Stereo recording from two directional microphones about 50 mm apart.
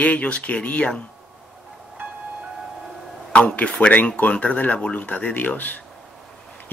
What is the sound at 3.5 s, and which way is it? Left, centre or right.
Speech, left.